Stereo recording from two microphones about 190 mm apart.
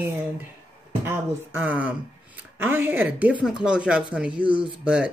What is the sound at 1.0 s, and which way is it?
Speech, 10° right (ahead or behind).